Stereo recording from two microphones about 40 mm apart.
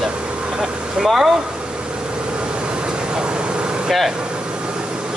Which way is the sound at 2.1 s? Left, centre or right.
Right.